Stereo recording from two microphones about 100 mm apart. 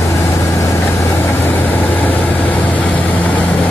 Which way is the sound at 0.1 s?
30° left (ahead or behind).